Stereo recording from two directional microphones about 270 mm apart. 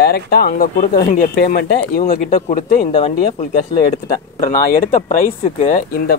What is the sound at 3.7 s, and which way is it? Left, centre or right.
Speech, centre.